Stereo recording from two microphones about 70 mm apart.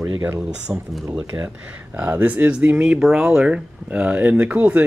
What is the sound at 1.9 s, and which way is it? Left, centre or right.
Speech, right.